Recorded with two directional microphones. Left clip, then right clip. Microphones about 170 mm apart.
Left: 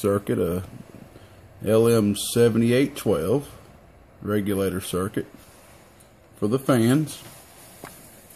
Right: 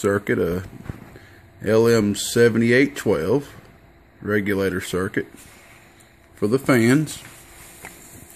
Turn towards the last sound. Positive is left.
turn(degrees=-20)  # may be behind; listen again after turning